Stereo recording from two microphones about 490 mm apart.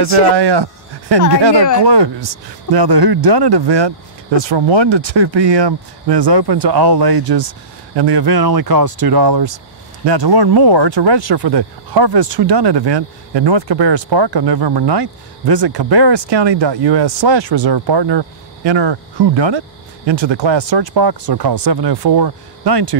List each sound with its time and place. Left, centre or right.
0.4 s speech: right